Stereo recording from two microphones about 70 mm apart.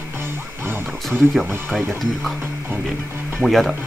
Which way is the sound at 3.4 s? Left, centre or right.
Centre.